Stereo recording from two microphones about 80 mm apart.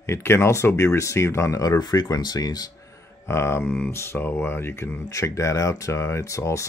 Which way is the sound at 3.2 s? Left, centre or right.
Left.